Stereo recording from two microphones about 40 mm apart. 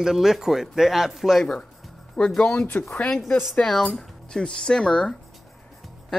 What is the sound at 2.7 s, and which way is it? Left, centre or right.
Speech, left.